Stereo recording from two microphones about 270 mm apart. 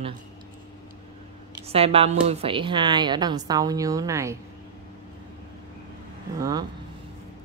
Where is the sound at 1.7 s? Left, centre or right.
Right.